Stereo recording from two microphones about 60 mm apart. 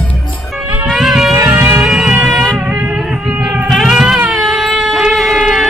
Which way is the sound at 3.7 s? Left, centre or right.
Centre.